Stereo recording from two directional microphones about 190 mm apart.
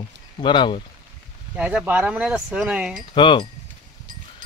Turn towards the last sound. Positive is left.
turn(degrees=25)  # may be behind; listen again after turning